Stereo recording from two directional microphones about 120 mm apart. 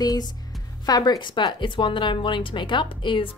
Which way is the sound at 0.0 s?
30° left (ahead or behind).